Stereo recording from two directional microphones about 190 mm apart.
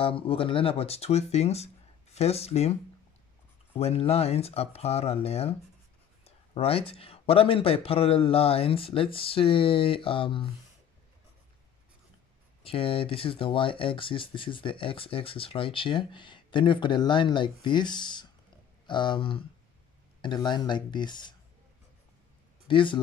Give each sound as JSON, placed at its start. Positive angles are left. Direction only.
{"t": 0.0, "sound": "speech", "side_deg": 30}
{"t": 12.6, "sound": "speech", "side_deg": 30}
{"t": 22.7, "sound": "speech", "side_deg": 25}